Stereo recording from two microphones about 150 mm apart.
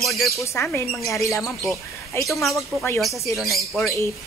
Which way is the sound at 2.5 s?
15° left (ahead or behind).